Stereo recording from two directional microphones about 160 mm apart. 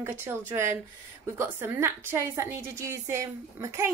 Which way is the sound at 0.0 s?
15° right (ahead or behind).